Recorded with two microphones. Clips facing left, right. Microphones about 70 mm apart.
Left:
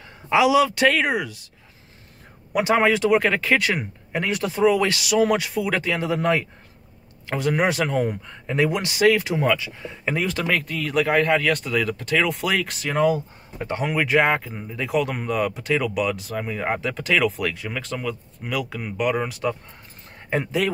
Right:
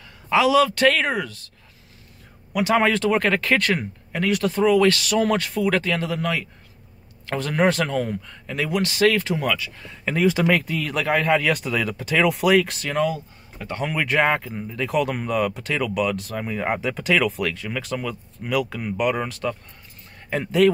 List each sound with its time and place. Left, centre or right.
0.3 s speech: centre
2.8 s speech: centre; by 6.4 s left
7.2 s speech: centre
10.2 s speech: centre
12.9 s speech: left
13.8 s speech: centre
20.6 s speech: centre